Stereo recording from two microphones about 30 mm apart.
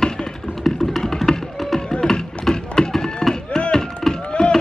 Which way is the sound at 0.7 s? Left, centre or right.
Centre.